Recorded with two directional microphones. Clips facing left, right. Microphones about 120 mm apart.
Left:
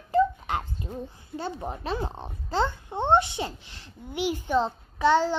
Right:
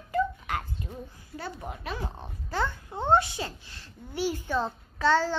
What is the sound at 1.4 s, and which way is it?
A child's voice, 30° left (ahead or behind).